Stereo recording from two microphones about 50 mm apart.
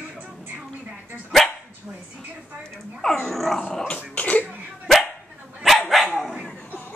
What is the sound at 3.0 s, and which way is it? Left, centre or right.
Dog, centre.